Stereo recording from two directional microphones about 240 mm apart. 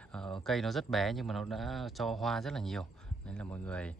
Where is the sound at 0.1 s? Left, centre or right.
Centre.